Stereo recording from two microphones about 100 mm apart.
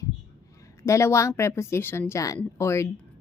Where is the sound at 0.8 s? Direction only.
30° left (ahead or behind).